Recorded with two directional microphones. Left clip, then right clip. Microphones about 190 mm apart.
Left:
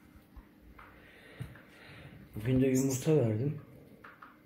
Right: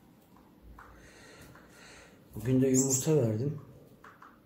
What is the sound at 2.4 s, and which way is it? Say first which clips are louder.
Speech: right 2 dB; 10° left (ahead or behind).